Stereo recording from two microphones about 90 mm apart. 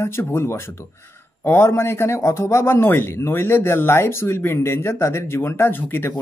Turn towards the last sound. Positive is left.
turn(degrees=25)  # may be behind; listen again after turning